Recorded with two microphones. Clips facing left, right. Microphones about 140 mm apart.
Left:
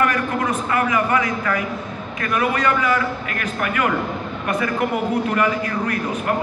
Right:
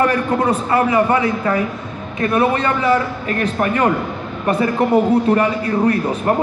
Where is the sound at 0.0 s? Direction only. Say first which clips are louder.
Right 4 dB; 30° right (ahead or behind).